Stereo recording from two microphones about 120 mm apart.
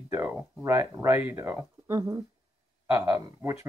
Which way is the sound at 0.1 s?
25° right (ahead or behind).